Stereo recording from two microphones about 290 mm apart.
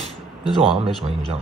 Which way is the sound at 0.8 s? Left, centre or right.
Centre.